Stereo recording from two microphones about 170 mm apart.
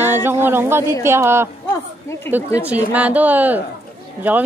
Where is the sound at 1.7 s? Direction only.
15° left (ahead or behind).